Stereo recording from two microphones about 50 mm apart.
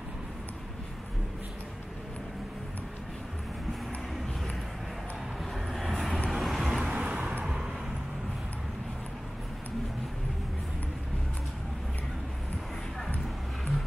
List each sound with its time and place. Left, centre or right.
5.4 s vehicle: centre
6.9 s vehicle: right